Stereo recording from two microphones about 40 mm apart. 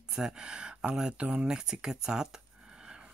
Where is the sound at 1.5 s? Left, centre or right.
Centre.